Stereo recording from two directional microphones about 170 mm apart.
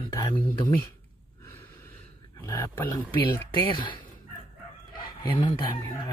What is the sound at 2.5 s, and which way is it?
Speech, 15° left (ahead or behind).